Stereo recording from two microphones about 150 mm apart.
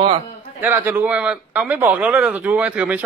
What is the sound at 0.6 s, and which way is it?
Speech, 15° right (ahead or behind).